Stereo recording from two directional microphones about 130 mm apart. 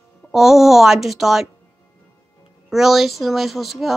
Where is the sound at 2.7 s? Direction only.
Centre (ahead or behind).